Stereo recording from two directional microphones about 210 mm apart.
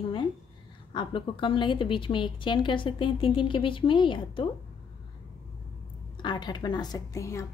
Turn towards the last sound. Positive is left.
turn(degrees=15)  # may be behind; listen again after turning